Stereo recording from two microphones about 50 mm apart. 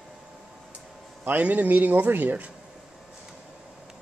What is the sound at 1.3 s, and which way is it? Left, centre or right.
Speech, right.